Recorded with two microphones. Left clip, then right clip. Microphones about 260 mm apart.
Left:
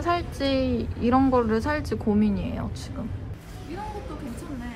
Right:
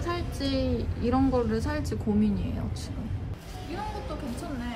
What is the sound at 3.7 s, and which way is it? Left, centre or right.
Speech, centre.